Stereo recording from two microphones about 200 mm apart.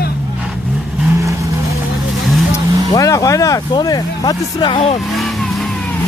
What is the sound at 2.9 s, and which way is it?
Music, 15° left (ahead or behind).